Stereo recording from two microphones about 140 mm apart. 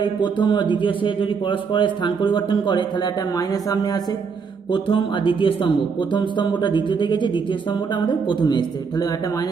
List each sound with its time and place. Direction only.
0.0 s a man's voice: 35° left (ahead or behind)
4.7 s a man's voice: 35° left (ahead or behind)